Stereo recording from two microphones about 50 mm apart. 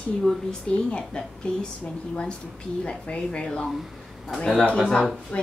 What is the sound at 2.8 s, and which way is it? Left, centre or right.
Speech, left.